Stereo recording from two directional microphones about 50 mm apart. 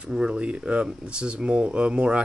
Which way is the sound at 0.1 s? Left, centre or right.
Right.